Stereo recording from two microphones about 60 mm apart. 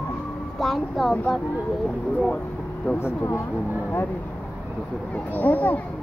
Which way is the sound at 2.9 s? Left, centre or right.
Left.